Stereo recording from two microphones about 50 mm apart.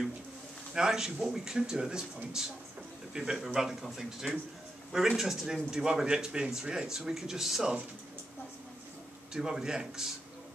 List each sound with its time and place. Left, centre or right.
0.7 s a man's voice: centre
9.3 s speech: centre